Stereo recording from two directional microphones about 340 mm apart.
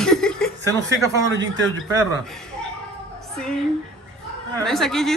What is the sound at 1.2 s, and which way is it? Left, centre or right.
Speech, right.